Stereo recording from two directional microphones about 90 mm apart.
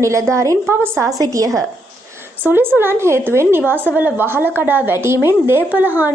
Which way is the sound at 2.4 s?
25° right (ahead or behind).